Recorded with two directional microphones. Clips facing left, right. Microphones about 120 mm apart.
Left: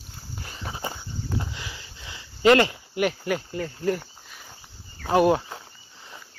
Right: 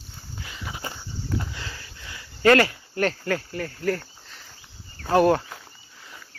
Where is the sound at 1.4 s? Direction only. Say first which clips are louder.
Even; 20° left (ahead or behind).